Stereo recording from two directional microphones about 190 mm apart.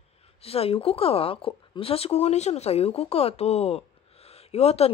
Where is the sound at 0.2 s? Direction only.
30° left (ahead or behind).